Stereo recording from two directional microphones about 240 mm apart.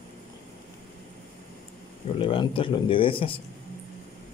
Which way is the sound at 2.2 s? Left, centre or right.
Left.